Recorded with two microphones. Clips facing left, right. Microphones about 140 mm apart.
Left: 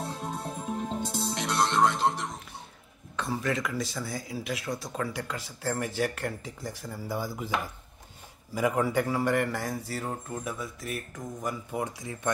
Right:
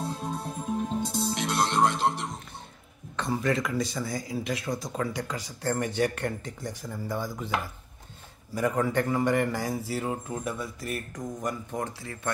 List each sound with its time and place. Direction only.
0.2 s music: 20° left (ahead or behind)
1.3 s music: 15° right (ahead or behind)
3.2 s speech: centre (ahead or behind)
8.5 s speech: 5° left (ahead or behind)